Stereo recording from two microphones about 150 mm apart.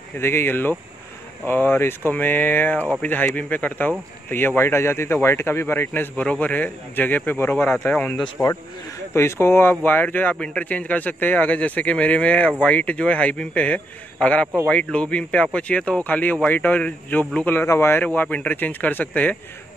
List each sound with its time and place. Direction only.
0.2 s speech: 15° left (ahead or behind)